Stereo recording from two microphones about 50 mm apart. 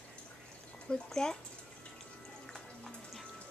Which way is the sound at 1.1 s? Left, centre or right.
Centre.